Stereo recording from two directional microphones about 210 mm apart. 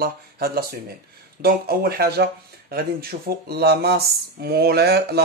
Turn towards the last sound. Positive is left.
turn(degrees=-50)  # may be behind; listen again after turning